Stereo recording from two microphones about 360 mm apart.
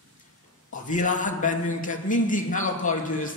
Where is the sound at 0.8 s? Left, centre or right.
Left.